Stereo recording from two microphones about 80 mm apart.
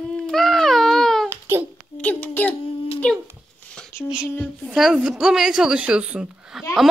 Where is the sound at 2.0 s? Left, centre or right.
Centre.